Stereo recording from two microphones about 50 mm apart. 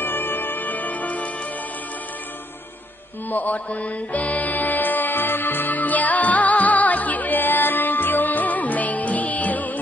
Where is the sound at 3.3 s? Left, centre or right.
Left.